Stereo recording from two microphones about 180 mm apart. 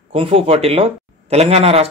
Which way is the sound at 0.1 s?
30° right (ahead or behind).